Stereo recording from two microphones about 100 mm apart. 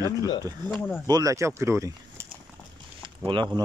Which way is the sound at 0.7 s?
20° left (ahead or behind).